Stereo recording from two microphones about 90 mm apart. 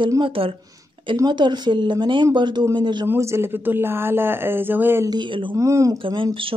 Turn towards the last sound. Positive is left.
turn(degrees=-70)  # may be behind; listen again after turning